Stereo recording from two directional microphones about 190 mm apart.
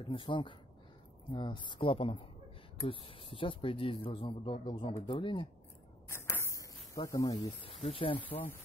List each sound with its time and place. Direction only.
0.0 s speech: 25° left (ahead or behind)
6.0 s a sound: 15° left (ahead or behind)
7.3 s speech: 30° left (ahead or behind)